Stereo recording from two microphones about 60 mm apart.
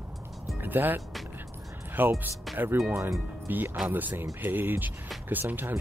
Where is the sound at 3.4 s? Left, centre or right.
Right.